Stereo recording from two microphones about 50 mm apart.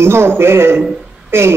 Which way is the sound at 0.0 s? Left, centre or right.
Right.